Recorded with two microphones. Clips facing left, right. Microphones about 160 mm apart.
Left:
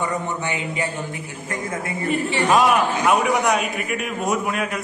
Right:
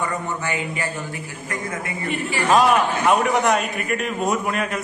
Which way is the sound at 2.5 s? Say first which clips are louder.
Right 1 dB; centre (ahead or behind).